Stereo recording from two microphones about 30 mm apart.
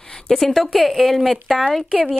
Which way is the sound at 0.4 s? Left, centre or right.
Centre.